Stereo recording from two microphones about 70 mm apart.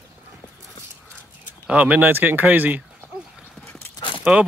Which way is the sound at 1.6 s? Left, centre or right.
Centre.